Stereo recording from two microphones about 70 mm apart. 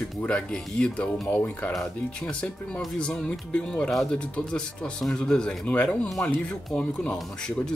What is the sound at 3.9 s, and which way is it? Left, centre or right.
Speech, centre.